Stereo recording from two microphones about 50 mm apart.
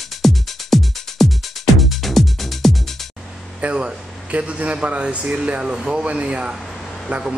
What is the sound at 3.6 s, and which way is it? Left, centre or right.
Speech, right.